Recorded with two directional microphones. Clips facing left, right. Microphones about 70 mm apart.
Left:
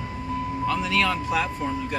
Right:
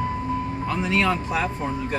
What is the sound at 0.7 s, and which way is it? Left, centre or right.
Speech, right.